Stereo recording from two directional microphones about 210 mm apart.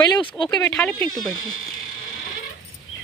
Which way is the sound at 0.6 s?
10° left (ahead or behind).